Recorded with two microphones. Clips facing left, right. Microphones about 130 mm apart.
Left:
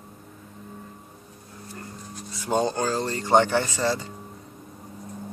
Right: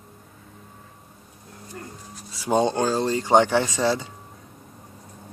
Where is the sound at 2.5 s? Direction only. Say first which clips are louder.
Right 3 dB; 10° right (ahead or behind).